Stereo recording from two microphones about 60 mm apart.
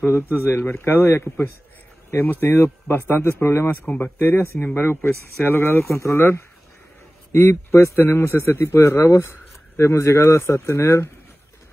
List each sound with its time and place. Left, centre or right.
0.5 s a man's voice: left
3.8 s speech: left
4.2 s a man's voice: left